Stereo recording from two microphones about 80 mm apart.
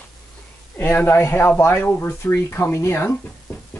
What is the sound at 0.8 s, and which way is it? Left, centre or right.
Speech, left.